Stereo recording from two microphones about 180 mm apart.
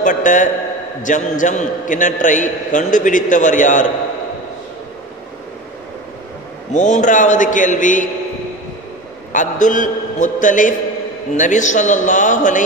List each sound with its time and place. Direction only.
0.0 s a man's voice: 45° left (ahead or behind)
6.7 s a man's voice: 45° left (ahead or behind)
9.3 s a man's voice: 45° left (ahead or behind)